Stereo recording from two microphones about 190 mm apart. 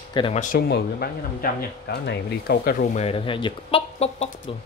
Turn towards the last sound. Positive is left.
turn(degrees=35)  # may be behind; listen again after turning